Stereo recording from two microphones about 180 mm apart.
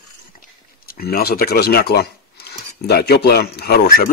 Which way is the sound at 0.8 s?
55° left (ahead or behind).